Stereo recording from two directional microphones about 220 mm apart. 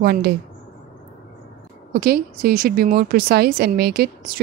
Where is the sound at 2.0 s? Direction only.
45° right (ahead or behind).